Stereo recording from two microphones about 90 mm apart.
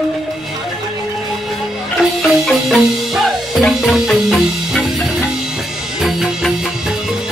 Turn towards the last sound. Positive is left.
turn(degrees=-5)  # may be behind; listen again after turning